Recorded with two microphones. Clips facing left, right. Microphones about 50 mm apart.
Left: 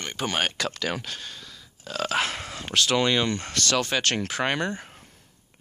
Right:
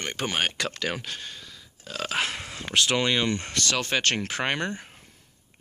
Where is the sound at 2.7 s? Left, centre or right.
Centre.